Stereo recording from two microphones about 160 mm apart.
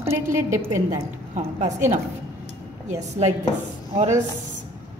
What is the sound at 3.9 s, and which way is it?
Speech, 45° right (ahead or behind).